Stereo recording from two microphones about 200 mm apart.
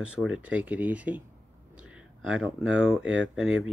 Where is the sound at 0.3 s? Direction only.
5° right (ahead or behind).